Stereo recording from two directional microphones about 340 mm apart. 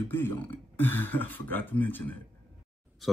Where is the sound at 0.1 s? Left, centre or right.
Centre.